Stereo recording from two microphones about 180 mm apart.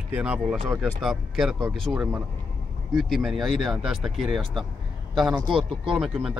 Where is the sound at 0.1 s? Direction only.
5° right (ahead or behind).